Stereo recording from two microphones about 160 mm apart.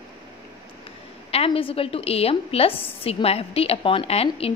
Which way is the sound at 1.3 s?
35° left (ahead or behind).